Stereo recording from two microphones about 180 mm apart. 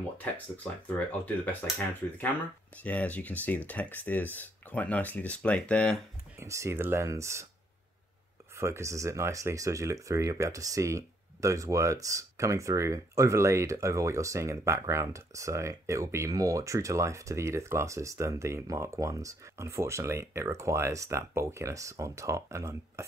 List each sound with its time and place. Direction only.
0.9 s speech: 10° left (ahead or behind)
2.7 s speech: 10° left (ahead or behind)
6.4 s speech: 15° right (ahead or behind)
8.5 s speech: 15° right (ahead or behind)